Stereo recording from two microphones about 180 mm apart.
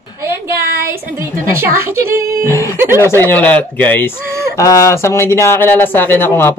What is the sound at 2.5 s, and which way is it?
Speech, 15° left (ahead or behind).